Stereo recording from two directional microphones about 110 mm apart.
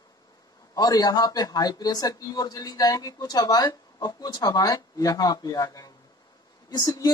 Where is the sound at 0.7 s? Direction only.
35° left (ahead or behind).